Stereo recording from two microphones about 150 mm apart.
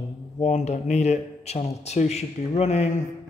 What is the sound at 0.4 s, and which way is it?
Speech, 50° left (ahead or behind).